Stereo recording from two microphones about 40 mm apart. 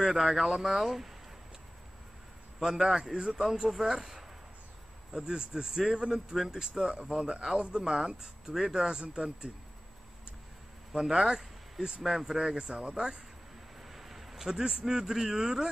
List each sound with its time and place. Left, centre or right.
0.0 s speech: centre
2.6 s speech: centre
5.1 s speech: centre
6.3 s speech: centre
6.8 s speech: right
11.0 s speech: centre
13.7 s a man's voice: centre